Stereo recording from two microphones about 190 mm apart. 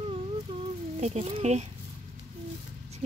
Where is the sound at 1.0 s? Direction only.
35° right (ahead or behind).